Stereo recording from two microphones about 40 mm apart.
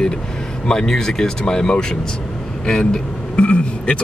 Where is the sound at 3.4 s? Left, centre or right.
Left.